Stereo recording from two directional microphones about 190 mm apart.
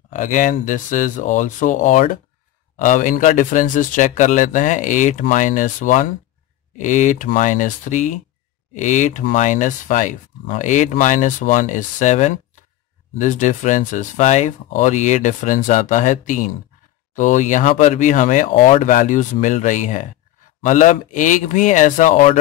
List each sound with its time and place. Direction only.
0.1 s speech: 40° left (ahead or behind)